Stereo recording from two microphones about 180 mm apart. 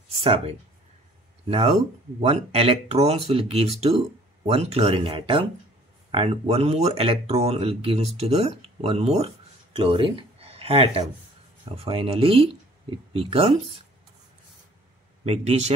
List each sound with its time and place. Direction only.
0.2 s speech: 30° right (ahead or behind)
2.1 s speech: 35° right (ahead or behind)
15.2 s speech: 35° right (ahead or behind)